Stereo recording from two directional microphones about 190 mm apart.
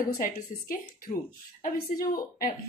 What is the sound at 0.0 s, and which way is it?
A woman's voice, 45° left (ahead or behind).